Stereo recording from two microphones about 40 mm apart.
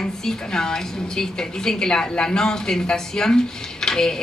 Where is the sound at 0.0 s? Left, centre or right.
Centre.